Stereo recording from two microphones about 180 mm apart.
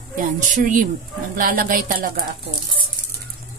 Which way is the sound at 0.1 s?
45° right (ahead or behind).